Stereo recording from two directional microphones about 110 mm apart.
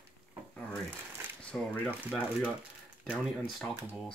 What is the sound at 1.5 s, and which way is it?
Speech, 15° left (ahead or behind).